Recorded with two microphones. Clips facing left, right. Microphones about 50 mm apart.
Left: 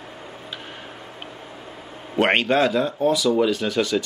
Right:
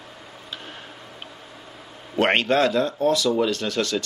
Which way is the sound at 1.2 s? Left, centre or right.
Left.